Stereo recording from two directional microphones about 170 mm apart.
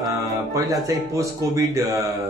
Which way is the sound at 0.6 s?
20° right (ahead or behind).